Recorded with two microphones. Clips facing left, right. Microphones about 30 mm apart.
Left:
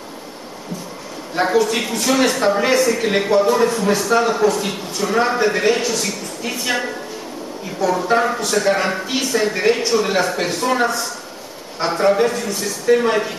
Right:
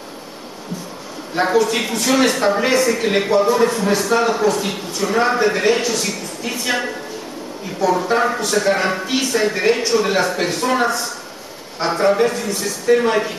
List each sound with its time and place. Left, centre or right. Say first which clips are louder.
1.3 s speech: even; centre
7.8 s speech: even; centre